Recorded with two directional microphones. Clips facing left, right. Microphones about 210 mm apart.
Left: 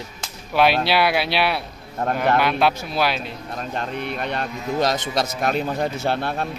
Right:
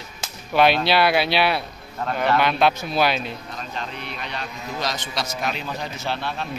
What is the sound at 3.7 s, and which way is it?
A man's voice, 50° left (ahead or behind).